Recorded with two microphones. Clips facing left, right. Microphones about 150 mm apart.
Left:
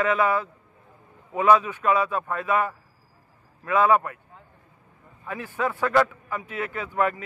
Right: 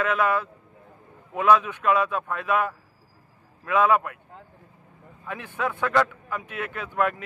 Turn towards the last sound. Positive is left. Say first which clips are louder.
# left 1 dB
turn(degrees=0)  # may be behind; listen again after turning